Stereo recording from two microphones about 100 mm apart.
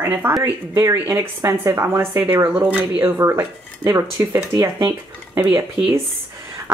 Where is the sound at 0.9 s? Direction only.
25° right (ahead or behind).